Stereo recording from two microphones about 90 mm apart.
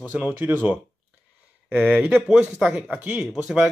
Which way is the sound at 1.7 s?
5° right (ahead or behind).